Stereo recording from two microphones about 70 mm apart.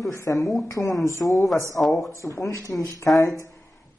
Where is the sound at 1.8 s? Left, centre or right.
Left.